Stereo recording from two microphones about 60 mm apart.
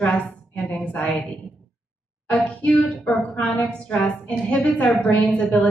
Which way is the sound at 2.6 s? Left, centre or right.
Left.